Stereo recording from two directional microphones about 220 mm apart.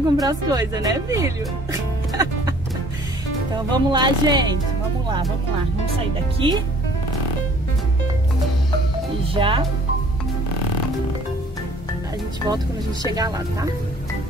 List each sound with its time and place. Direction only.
0.2 s speech: 15° right (ahead or behind)
3.7 s speech: 20° right (ahead or behind)
6.4 s speech: 25° right (ahead or behind)
9.3 s speech: 25° right (ahead or behind)
12.5 s speech: 20° right (ahead or behind)